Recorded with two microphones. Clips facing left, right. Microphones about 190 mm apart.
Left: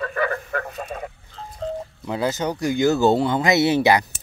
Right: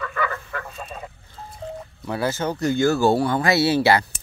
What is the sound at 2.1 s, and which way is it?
Speech, 20° left (ahead or behind).